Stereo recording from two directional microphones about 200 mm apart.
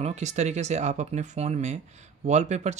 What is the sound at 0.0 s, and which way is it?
Speech, 35° right (ahead or behind).